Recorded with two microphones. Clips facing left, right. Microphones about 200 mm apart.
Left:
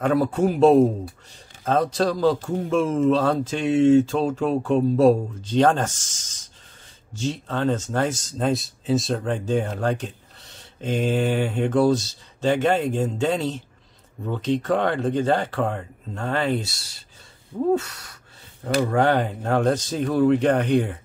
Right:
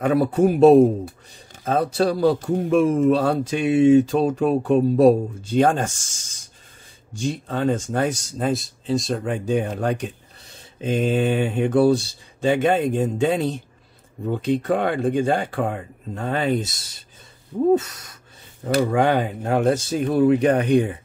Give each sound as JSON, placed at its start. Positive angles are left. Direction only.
{"t": 0.0, "sound": "speech", "side_deg": -10}
{"t": 9.3, "sound": "speech", "side_deg": -15}
{"t": 18.8, "sound": "speech", "side_deg": -10}